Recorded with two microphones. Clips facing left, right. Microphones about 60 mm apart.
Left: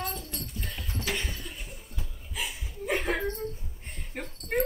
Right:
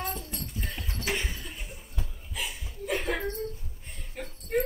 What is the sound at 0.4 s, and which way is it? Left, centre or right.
Clip-clop, centre.